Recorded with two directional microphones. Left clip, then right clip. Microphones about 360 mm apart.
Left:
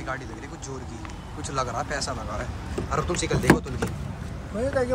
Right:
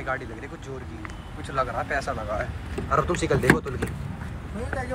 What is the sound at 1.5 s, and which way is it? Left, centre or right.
Speech, centre.